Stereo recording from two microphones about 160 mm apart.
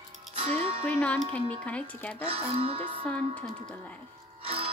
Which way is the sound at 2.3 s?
40° right (ahead or behind).